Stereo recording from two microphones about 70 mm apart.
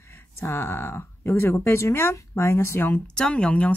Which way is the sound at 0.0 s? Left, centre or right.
Left.